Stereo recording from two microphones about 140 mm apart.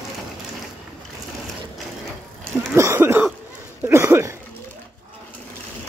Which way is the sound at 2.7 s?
20° right (ahead or behind).